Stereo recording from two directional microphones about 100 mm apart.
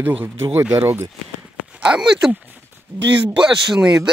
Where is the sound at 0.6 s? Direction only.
20° right (ahead or behind).